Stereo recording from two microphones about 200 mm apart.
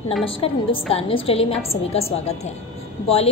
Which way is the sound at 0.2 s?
25° left (ahead or behind).